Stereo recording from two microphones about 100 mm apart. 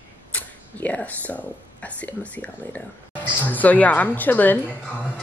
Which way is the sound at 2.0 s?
15° left (ahead or behind).